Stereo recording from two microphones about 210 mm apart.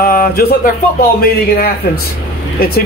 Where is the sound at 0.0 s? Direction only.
45° left (ahead or behind).